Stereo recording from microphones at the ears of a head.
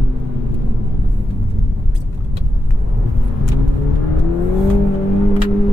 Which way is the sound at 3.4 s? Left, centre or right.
Left.